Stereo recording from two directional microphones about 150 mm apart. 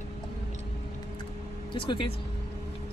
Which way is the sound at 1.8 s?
35° left (ahead or behind).